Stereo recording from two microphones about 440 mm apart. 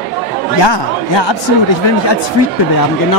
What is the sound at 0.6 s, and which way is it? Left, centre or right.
Speech, left.